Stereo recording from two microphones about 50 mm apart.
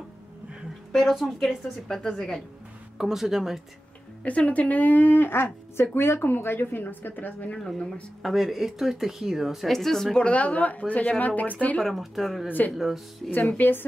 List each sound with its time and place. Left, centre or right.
1.2 s a woman's voice: centre
3.0 s speech: centre
4.2 s speech: left
7.5 s a woman's voice: centre
8.2 s speech: centre
9.7 s a woman's voice: centre
10.1 s speech: left
11.8 s a woman's voice: centre
12.4 s speech: left
12.7 s a woman's voice: centre
13.2 s a woman's voice: centre
13.6 s speech: left